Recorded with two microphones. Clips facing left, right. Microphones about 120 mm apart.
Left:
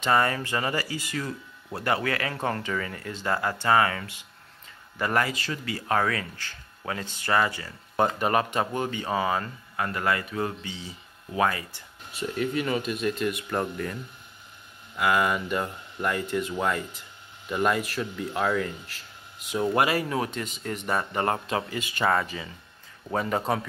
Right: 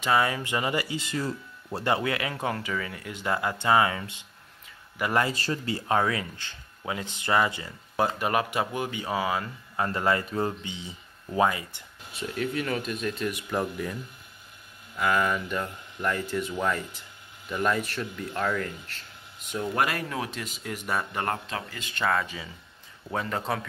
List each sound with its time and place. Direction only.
0.0 s speech: 5° right (ahead or behind)
0.4 s speech: 15° right (ahead or behind)
2.4 s a man's voice: 5° right (ahead or behind)
5.3 s speech: 35° right (ahead or behind)
5.9 s speech: 15° right (ahead or behind)
7.9 s speech: 5° right (ahead or behind)
9.8 s speech: 25° right (ahead or behind)
12.1 s speech: centre (ahead or behind)
15.0 s speech: 5° left (ahead or behind)
21.3 s speech: 15° left (ahead or behind)